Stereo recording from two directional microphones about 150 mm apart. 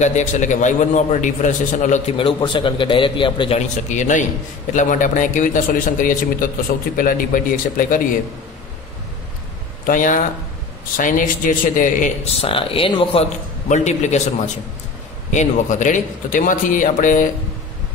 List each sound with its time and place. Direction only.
0.0 s a man's voice: 55° left (ahead or behind)
2.1 s a man's voice: 35° left (ahead or behind); by 8.0 s 70° left (ahead or behind)
9.8 s a man's voice: 60° left (ahead or behind)
12.4 s a man's voice: 40° left (ahead or behind); by 17.3 s 60° left (ahead or behind)